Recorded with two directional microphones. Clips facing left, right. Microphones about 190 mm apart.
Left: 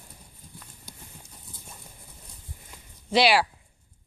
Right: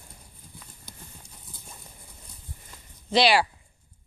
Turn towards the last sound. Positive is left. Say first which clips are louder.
# even
turn(degrees=5)  # may be behind; listen again after turning